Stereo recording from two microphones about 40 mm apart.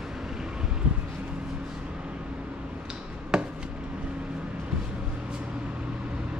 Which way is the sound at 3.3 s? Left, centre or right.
Centre.